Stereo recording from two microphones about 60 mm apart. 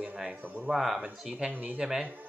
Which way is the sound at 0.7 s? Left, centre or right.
Centre.